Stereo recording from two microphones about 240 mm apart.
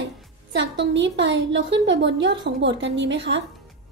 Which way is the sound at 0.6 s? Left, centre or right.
Right.